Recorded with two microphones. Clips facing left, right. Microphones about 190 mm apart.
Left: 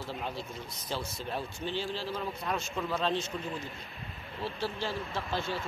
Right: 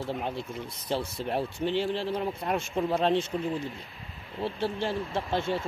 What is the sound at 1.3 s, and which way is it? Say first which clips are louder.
Speech: right 7 dB; 70° right (ahead or behind).